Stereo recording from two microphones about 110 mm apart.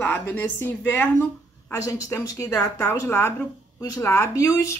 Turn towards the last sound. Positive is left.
turn(degrees=25)  # may be behind; listen again after turning